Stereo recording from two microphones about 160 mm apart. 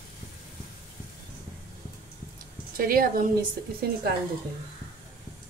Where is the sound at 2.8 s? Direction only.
65° right (ahead or behind).